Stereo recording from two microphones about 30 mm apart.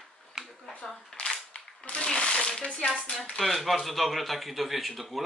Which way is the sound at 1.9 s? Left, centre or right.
Left.